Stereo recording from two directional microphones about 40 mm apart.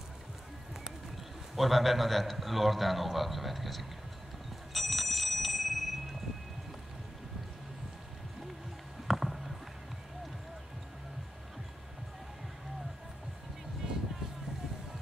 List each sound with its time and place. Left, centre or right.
1.5 s a man's voice: centre
4.7 s bicycle bell: centre
9.0 s a sound: centre
13.8 s vehicle: centre